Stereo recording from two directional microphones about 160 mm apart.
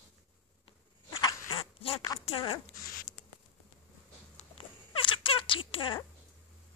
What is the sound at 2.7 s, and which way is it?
Zipper, 65° left (ahead or behind).